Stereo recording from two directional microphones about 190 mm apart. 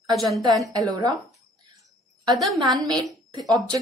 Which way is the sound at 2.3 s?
Centre (ahead or behind).